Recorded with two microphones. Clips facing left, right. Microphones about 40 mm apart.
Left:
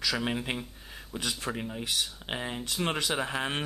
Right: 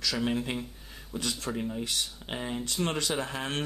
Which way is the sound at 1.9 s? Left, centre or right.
Centre.